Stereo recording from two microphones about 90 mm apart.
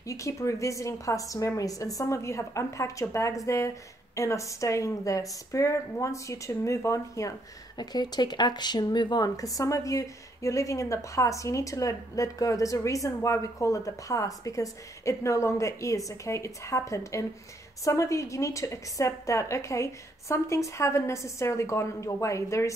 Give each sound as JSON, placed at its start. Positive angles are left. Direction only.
{"t": 0.0, "sound": "a woman's voice", "side_deg": 35}
{"t": 7.7, "sound": "a woman's voice", "side_deg": 50}